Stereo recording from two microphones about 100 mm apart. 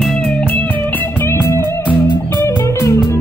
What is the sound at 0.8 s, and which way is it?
Music, 20° left (ahead or behind).